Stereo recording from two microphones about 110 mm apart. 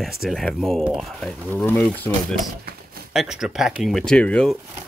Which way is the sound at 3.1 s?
5° right (ahead or behind).